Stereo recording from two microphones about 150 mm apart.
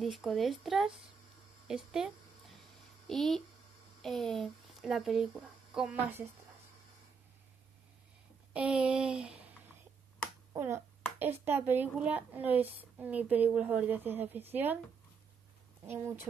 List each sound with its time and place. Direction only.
0.0 s speech: centre (ahead or behind)
8.5 s speech: 5° right (ahead or behind)
10.5 s speech: 20° right (ahead or behind)